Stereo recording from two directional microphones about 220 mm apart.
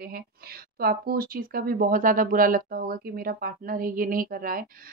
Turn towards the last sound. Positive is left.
turn(degrees=-40)  # may be behind; listen again after turning